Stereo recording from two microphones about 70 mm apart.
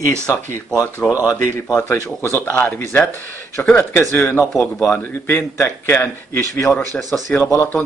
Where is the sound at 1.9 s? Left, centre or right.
Left.